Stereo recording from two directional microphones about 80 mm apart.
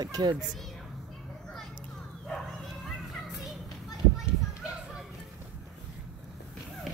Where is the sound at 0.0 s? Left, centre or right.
Right.